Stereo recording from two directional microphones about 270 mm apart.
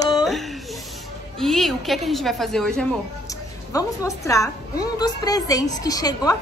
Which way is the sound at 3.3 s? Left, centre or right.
Centre.